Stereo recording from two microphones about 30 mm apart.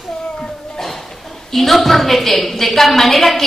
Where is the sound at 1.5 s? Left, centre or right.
Centre.